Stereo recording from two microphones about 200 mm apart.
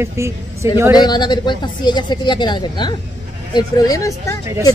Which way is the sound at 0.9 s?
20° left (ahead or behind).